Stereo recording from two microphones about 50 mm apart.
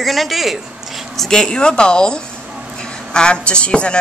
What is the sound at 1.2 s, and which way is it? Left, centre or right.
A woman's voice, centre.